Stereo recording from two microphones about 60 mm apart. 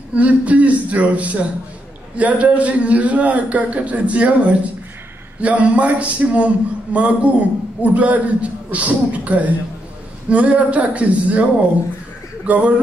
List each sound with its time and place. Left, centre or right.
0.1 s a man's voice: right
12.4 s a man's voice: right